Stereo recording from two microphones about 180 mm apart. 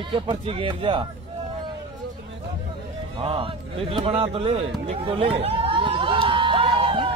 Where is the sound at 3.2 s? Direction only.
30° right (ahead or behind).